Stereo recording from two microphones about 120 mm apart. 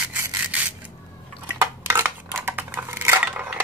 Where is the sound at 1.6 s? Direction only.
20° right (ahead or behind).